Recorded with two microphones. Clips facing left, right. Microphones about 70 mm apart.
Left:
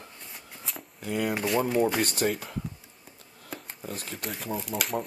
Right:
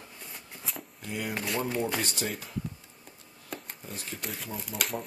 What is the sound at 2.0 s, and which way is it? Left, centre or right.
Speech, left.